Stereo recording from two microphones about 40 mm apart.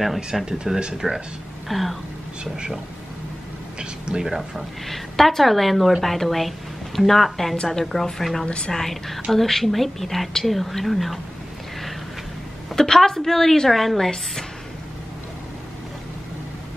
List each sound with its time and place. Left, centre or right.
0.0 s a woman's voice: centre
0.5 s speech: centre
1.7 s a woman's voice: centre
2.5 s speech: centre
4.0 s speech: right
4.3 s speech: centre
4.8 s a woman's voice: centre
8.5 s a woman's voice: left
8.7 s a woman's voice: centre
12.7 s a woman's voice: centre